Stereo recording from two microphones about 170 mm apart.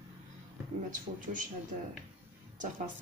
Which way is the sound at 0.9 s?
50° right (ahead or behind).